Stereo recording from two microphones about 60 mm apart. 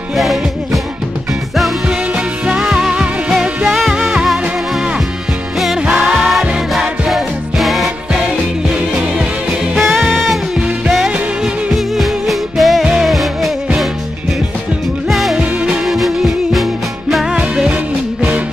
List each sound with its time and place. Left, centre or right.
0.1 s music: centre
1.9 s music: centre
6.1 s music: centre
9.8 s music: centre
11.7 s music: centre
15.0 s music: centre